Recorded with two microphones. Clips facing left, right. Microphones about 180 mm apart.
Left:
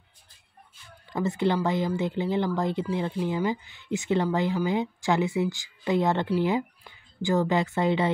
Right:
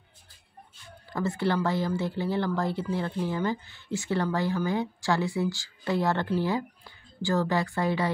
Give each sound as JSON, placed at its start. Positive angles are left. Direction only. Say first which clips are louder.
{"t": 1.1, "sound": "speech", "louder": "left 2 dB", "side_deg": 20}